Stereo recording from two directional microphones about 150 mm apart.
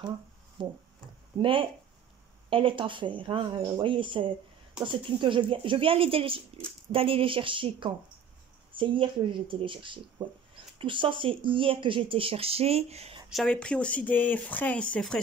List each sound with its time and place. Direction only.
0.6 s speech: 30° right (ahead or behind)
13.3 s speech: 5° left (ahead or behind)